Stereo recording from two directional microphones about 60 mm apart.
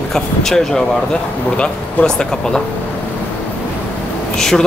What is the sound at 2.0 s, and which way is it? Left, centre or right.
Speech, centre.